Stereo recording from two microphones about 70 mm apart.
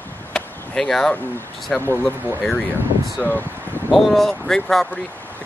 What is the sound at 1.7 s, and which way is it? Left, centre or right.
Speech, centre.